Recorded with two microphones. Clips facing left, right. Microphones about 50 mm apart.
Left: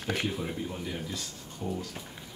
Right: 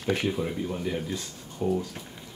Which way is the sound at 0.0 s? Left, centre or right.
Centre.